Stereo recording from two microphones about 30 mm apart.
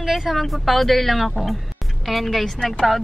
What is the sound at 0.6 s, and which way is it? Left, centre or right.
Speech, centre.